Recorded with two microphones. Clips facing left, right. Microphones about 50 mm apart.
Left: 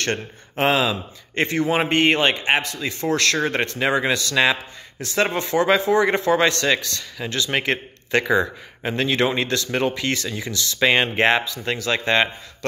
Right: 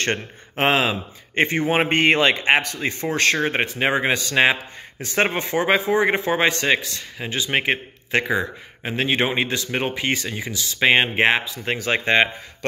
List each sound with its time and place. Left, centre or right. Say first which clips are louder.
0.0 s a man's voice: right 1 dB; right
1.3 s a man's voice: right 1 dB; right
3.2 s a man's voice: right 3 dB; right; by 9.0 s centre
9.0 s a man's voice: even; right
11.1 s speech: even; centre
11.6 s a man's voice: right 1 dB; right